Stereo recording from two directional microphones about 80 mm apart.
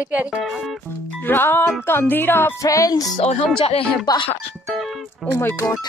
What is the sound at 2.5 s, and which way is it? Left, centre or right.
Music, left.